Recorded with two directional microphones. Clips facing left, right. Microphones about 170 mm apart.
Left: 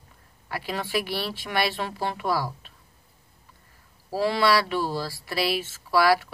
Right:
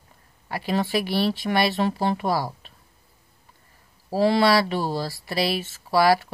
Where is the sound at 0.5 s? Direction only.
25° right (ahead or behind).